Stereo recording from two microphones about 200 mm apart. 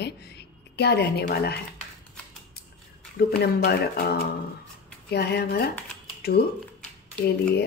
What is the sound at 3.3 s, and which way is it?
Speech, 55° left (ahead or behind).